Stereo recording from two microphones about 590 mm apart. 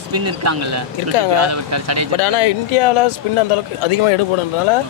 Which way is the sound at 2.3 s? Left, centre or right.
Left.